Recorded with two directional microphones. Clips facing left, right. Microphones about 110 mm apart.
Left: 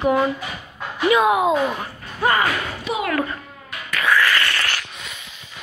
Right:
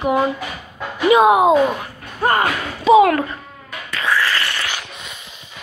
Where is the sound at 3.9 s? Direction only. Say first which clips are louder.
Left 1 dB; 25° right (ahead or behind).